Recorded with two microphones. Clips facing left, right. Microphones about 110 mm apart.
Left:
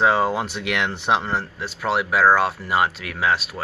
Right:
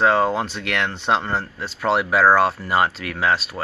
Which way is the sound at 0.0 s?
5° left (ahead or behind).